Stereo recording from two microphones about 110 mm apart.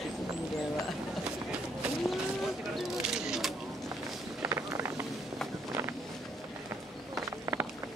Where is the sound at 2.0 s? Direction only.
Centre (ahead or behind).